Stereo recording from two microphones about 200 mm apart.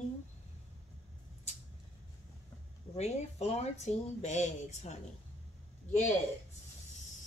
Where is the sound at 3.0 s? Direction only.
35° left (ahead or behind).